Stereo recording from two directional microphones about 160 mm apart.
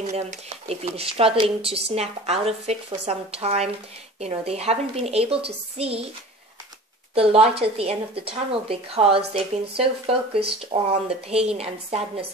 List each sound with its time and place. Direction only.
0.0 s speech: 45° right (ahead or behind)
7.2 s speech: 35° right (ahead or behind)